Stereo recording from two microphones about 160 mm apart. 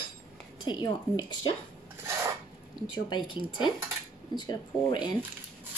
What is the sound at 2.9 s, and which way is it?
A woman's voice, 30° left (ahead or behind).